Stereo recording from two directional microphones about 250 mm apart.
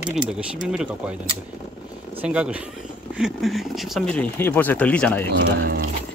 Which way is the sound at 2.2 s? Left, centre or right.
Centre.